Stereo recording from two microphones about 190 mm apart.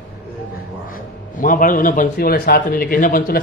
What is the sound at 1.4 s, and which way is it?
A man's voice, 45° left (ahead or behind).